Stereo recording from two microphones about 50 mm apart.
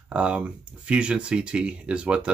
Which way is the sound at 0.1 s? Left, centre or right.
Right.